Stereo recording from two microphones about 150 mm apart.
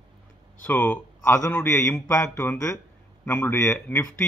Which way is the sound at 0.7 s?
10° left (ahead or behind).